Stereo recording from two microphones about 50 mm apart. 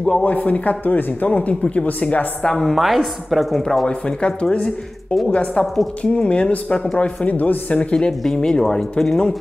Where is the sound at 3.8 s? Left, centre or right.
Left.